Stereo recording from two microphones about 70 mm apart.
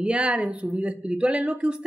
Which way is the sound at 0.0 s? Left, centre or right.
Centre.